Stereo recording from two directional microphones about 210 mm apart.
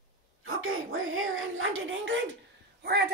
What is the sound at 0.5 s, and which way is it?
Speech, 75° right (ahead or behind).